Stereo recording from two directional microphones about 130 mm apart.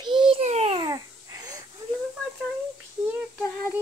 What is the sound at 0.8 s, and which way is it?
Babbling, 35° right (ahead or behind).